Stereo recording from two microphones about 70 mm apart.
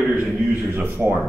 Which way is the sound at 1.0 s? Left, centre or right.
Centre.